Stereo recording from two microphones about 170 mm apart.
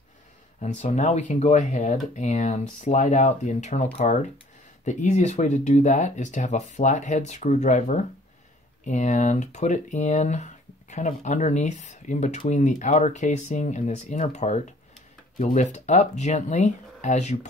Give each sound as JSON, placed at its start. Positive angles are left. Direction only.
{"t": 0.6, "sound": "speech", "side_deg": 40}